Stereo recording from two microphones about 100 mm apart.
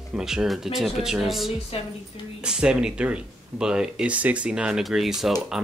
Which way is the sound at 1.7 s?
80° left.